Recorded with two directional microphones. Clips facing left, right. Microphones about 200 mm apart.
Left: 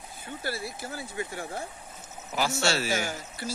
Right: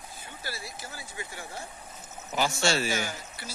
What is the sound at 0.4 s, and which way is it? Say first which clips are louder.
Speech: left 6 dB; 55° left (ahead or behind).